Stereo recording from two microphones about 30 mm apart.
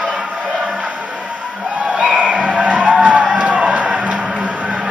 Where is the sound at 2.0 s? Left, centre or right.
Right.